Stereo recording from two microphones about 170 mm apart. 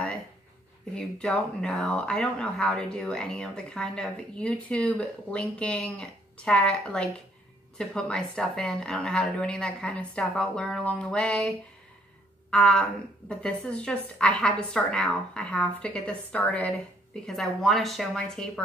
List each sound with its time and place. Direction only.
0.9 s speech: 5° left (ahead or behind)